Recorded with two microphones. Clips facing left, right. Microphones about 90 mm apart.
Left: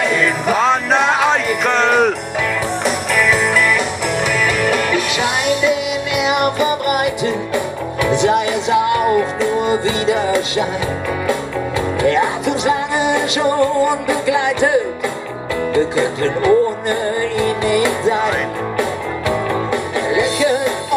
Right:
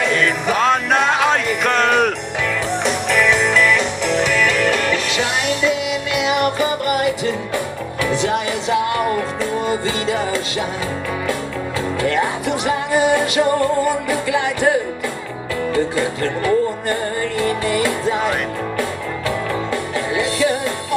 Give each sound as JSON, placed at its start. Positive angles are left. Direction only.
{"t": 0.0, "sound": "music", "side_deg": 5}
{"t": 12.0, "sound": "music", "side_deg": 20}
{"t": 20.2, "sound": "music", "side_deg": 20}